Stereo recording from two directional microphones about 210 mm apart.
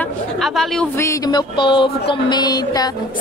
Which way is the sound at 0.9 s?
15° left (ahead or behind).